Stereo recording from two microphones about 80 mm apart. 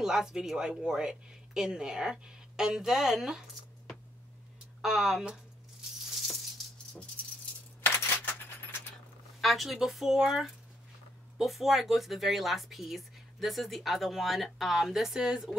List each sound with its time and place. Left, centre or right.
0.0 s speech: centre
4.8 s speech: centre
7.8 s keys jangling: left
9.4 s speech: centre